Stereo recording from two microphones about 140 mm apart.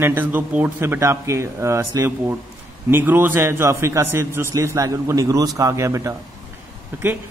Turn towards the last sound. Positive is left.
turn(degrees=-15)  # may be behind; listen again after turning